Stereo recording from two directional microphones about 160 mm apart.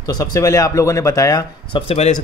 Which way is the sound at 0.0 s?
25° left (ahead or behind).